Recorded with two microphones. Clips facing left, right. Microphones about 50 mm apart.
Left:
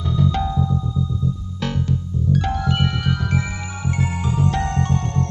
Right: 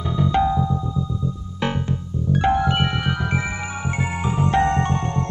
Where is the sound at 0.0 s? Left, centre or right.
Right.